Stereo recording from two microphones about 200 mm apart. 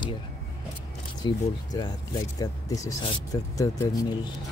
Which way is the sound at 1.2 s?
20° left (ahead or behind).